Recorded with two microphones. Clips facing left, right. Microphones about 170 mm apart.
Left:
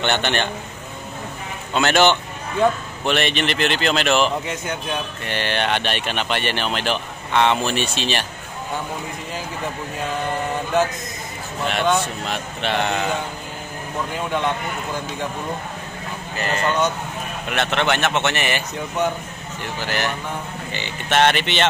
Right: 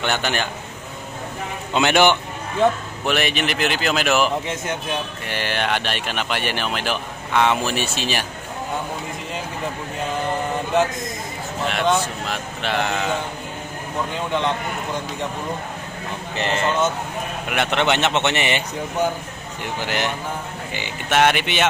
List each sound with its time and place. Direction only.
0.0 s speech: 5° right (ahead or behind)
1.7 s speech: 15° right (ahead or behind)
11.6 s speech: centre (ahead or behind)
16.3 s a man's voice: 25° right (ahead or behind)
19.8 s speech: 15° right (ahead or behind)